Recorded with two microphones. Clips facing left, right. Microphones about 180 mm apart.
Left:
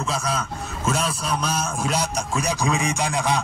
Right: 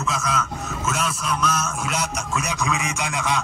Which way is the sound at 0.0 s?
30° left (ahead or behind).